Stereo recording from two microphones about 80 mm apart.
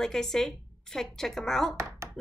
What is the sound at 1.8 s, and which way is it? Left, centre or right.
Speech, right.